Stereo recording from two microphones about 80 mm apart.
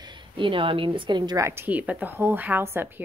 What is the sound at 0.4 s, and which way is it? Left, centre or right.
Speech, right.